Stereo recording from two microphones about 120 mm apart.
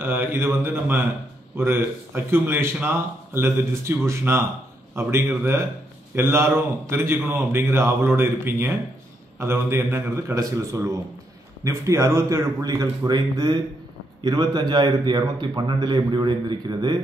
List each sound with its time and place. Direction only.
0.0 s a man's voice: 20° right (ahead or behind); by 17.0 s 35° right (ahead or behind)